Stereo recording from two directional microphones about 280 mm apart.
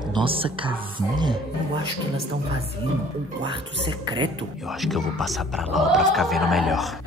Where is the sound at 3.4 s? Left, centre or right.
Centre.